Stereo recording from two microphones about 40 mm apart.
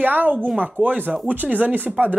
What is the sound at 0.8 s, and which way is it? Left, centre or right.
Speech, right.